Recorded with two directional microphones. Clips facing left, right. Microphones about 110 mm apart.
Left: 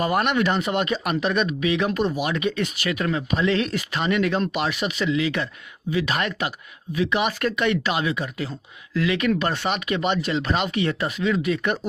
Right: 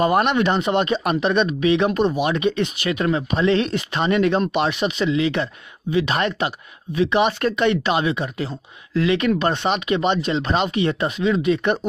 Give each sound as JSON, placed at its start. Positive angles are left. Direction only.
{"t": 0.0, "sound": "speech", "side_deg": -30}